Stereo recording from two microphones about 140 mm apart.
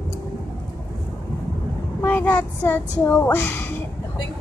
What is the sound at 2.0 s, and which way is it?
Speech, 10° left (ahead or behind).